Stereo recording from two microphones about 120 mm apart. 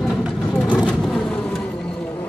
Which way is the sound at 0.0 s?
5° left (ahead or behind).